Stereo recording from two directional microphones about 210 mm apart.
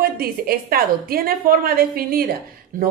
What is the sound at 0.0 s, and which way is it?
A woman's voice, 45° right (ahead or behind).